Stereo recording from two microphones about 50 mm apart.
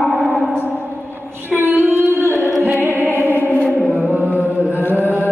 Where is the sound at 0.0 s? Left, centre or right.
Centre.